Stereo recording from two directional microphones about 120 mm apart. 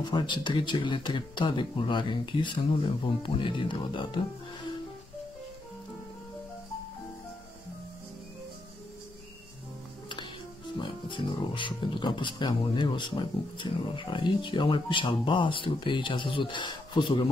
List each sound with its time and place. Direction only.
0.0 s speech: 40° left (ahead or behind)
10.0 s music: 40° left (ahead or behind)
10.8 s speech: 40° left (ahead or behind)